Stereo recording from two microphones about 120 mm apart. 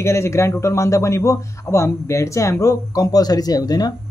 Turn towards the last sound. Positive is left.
turn(degrees=35)  # may be behind; listen again after turning